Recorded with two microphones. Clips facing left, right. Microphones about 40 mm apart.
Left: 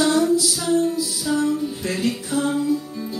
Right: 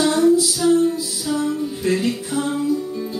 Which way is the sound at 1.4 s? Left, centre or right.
Centre.